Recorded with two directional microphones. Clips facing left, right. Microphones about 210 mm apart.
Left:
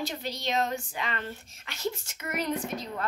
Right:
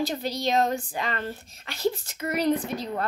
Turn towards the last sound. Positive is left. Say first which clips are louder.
# right 5 dB
turn(degrees=-35)  # may be behind; listen again after turning